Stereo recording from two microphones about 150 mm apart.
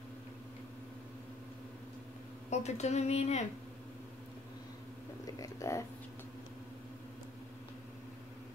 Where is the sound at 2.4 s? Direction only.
50° left (ahead or behind).